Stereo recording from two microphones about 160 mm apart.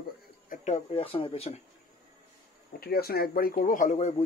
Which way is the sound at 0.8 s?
35° left (ahead or behind).